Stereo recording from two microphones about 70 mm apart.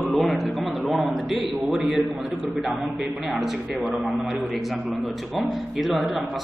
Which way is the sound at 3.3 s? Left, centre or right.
Centre.